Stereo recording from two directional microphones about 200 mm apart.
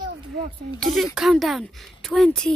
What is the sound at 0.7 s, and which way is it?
Speech, centre (ahead or behind).